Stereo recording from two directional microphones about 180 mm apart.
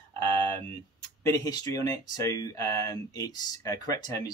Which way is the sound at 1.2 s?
20° left (ahead or behind).